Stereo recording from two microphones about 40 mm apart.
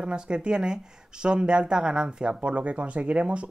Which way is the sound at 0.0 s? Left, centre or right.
Right.